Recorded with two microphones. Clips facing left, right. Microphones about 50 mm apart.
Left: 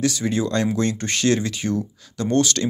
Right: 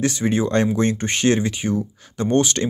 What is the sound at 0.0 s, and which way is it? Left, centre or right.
Speech, right.